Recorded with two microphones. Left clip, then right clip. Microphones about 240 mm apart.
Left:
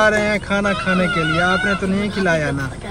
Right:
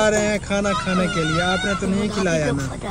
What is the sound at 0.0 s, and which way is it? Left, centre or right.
Speech, centre.